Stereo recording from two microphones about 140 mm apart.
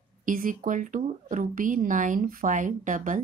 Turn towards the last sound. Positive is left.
turn(degrees=-65)  # may be behind; listen again after turning